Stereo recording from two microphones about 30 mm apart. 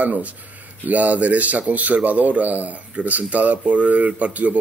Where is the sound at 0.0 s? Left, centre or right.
Right.